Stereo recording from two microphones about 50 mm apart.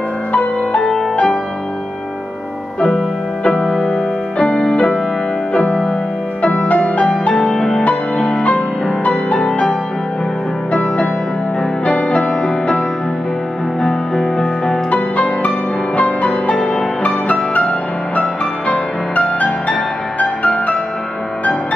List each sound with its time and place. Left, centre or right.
1.1 s music: centre
3.4 s keyboard: centre
4.4 s music: centre
6.4 s music: left
7.5 s music: centre
10.7 s music: left
13.8 s music: centre
14.9 s music: left
20.2 s music: left